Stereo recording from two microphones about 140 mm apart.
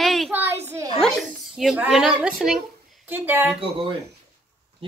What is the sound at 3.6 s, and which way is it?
Speech, 40° right (ahead or behind).